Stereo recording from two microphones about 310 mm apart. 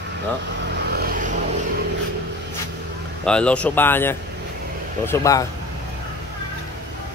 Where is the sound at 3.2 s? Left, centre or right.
Centre.